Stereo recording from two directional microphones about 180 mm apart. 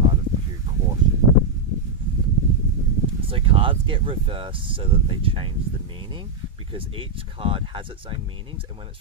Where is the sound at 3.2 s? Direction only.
30° right (ahead or behind).